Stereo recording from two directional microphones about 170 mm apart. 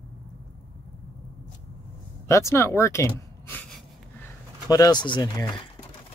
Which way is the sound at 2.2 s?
15° left (ahead or behind).